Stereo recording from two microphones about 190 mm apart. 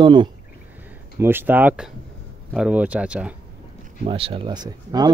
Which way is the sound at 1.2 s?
10° right (ahead or behind).